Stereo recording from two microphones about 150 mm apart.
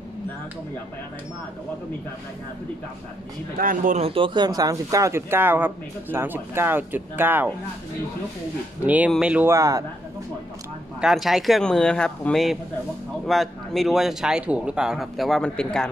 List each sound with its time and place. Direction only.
3.5 s speech: 65° right (ahead or behind)
4.0 s speech: 35° right (ahead or behind); by 7.4 s 15° right (ahead or behind)
8.8 s speech: 10° right (ahead or behind)
11.0 s speech: centre (ahead or behind)